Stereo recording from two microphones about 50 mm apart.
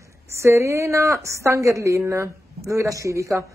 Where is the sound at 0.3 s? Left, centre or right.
Right.